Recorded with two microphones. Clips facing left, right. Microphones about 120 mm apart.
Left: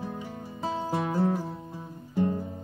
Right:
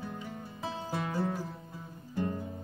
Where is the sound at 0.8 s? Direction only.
25° left (ahead or behind).